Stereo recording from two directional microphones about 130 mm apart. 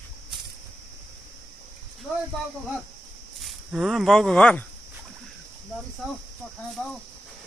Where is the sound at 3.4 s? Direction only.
Centre (ahead or behind).